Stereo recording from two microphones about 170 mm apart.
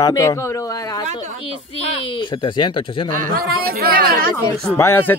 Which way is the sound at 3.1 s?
55° right (ahead or behind).